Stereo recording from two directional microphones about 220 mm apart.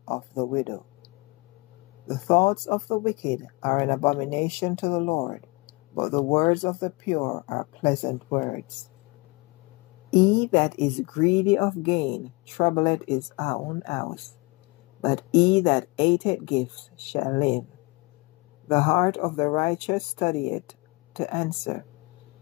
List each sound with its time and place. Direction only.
0.0 s speech: 30° left (ahead or behind)
2.2 s speech: 30° left (ahead or behind)
10.1 s speech: 25° left (ahead or behind)
18.7 s speech: 25° left (ahead or behind)